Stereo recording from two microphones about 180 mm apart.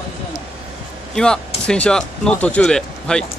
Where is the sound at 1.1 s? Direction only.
5° left (ahead or behind).